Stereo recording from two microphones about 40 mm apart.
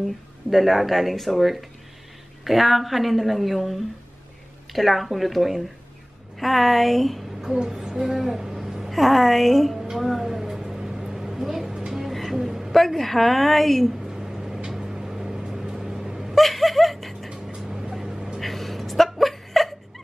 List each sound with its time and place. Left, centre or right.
0.5 s a woman's voice: centre
7.4 s a woman's voice: centre
9.9 s a sound: centre
11.9 s music: centre
12.7 s a woman's voice: centre
14.0 s a sound: centre
14.9 s vehicle: centre
15.4 s vehicle: centre
15.7 s a sound: centre
16.3 s a sound: centre
17.6 s vehicle: centre
18.4 s dog: centre